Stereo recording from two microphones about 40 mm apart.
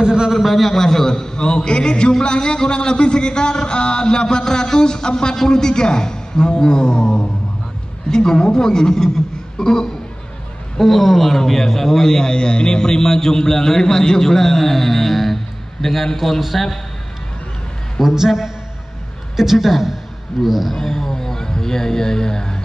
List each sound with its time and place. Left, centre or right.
0.0 s a sound: centre
0.3 s a man's voice: centre
18.0 s a woman's voice: centre
20.7 s a man's voice: centre